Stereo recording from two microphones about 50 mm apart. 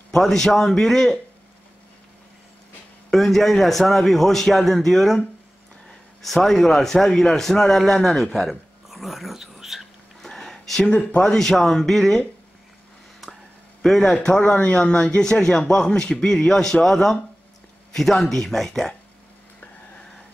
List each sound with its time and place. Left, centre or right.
0.1 s a man's voice: centre
3.1 s a man's voice: centre
6.2 s a man's voice: centre
10.2 s a sound: centre
10.9 s speech: left
11.2 s a man's voice: centre
13.8 s a man's voice: centre
14.1 s a man's voice: centre